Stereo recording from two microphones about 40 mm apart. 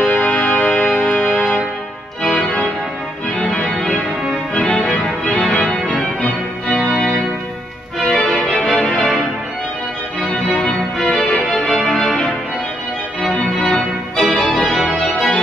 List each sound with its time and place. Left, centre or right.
0.1 s music: left
3.7 s organ: centre
4.9 s organ: left
8.1 s music: left
8.7 s organ: left
11.5 s music: centre
13.2 s organ: left
14.1 s organ: centre